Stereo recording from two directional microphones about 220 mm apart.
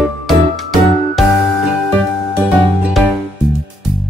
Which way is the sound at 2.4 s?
Centre (ahead or behind).